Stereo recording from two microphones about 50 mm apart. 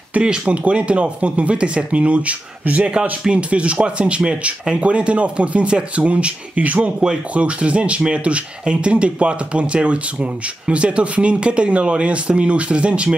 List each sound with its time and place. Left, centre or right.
0.2 s speech: right
7.0 s speech: centre